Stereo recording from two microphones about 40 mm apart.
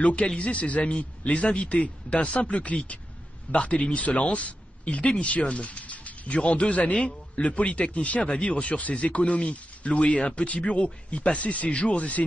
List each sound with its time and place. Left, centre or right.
0.0 s speech: left